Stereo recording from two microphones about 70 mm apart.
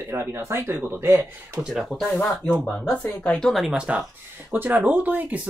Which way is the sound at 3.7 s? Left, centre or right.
Centre.